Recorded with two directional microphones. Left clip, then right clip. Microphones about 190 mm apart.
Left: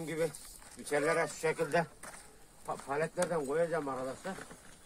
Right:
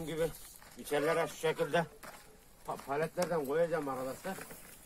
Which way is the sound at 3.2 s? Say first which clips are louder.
Even; 10° left (ahead or behind).